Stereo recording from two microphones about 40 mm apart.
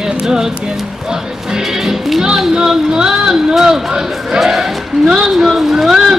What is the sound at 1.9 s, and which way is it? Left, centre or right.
Speech, centre.